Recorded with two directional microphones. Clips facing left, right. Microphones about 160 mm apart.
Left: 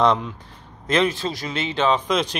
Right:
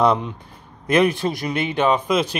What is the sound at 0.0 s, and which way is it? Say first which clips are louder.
Speech: right 1 dB; 15° right (ahead or behind).